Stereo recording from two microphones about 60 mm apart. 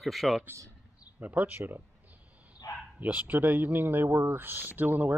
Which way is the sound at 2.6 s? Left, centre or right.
Left.